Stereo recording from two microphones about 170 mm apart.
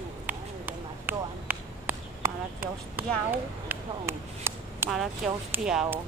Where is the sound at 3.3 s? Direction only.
15° right (ahead or behind).